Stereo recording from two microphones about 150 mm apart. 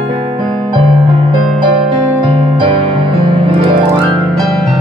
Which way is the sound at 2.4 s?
35° right (ahead or behind).